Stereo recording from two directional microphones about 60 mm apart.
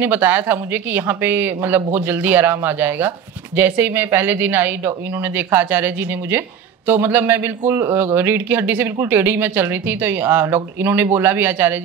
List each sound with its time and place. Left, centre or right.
0.0 s speech: right